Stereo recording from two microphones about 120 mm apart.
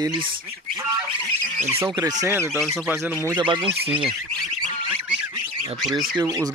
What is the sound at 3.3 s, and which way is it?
Speech, 45° right (ahead or behind).